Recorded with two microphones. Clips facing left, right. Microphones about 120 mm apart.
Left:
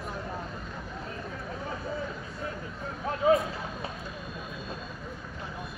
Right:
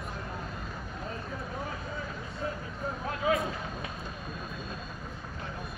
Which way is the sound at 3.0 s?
30° left (ahead or behind).